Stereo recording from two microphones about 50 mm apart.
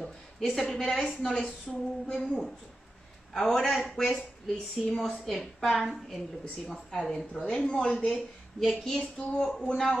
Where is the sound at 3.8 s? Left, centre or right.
Centre.